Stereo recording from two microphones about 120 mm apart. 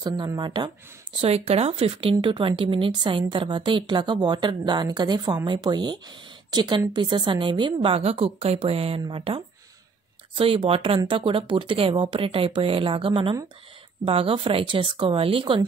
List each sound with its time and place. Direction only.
0.0 s speech: 35° right (ahead or behind)
1.2 s speech: 55° right (ahead or behind)